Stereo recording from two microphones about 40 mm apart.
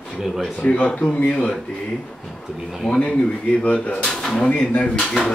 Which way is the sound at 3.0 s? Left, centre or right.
Left.